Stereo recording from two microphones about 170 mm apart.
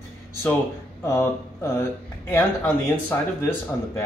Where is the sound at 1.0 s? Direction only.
15° left (ahead or behind).